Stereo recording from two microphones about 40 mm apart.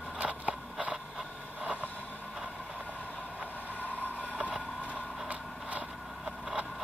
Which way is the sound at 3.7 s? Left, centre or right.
Left.